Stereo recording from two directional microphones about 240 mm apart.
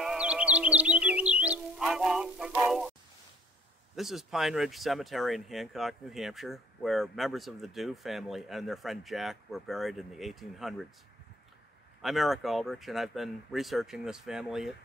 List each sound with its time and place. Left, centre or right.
0.0 s music: centre
3.9 s speech: centre
12.0 s speech: centre